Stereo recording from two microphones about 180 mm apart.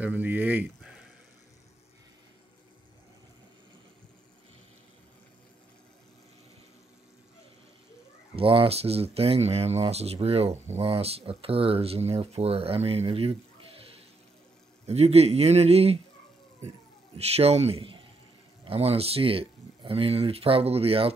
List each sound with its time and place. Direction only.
0.0 s speech: 10° right (ahead or behind)
8.4 s speech: 30° right (ahead or behind)
17.2 s speech: 35° right (ahead or behind)